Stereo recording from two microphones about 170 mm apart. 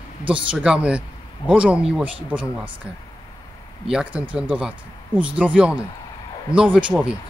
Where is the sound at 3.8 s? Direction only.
5° right (ahead or behind).